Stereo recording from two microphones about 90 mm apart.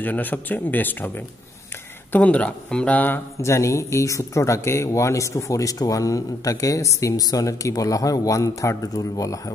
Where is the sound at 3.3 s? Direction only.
35° left (ahead or behind).